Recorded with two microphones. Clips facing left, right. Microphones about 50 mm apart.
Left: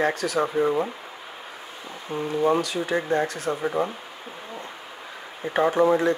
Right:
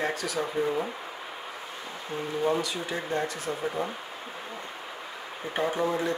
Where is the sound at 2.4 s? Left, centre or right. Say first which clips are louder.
Left 5 dB; left.